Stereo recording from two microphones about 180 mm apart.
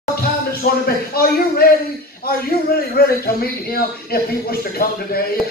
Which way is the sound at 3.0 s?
60° left (ahead or behind).